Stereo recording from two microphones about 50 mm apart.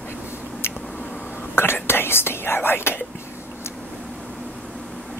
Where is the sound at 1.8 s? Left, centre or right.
Left.